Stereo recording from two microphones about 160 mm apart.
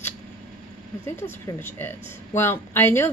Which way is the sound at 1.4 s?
15° left (ahead or behind).